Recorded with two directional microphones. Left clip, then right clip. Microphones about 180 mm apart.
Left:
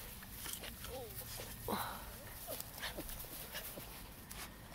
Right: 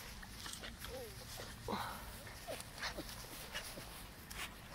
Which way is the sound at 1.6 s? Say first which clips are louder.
Left 1 dB; 5° left (ahead or behind).